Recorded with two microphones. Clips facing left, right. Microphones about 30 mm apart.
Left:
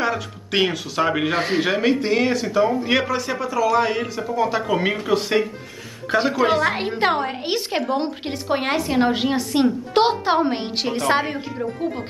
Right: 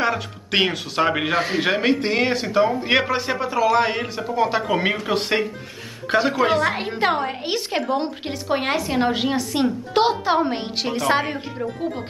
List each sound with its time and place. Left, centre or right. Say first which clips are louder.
0.0 s a sound: right 1 dB; centre
0.9 s speech: even; centre
1.3 s a woman's voice: even; centre
1.6 s a man's voice: even; centre
6.1 s a woman's voice: even; centre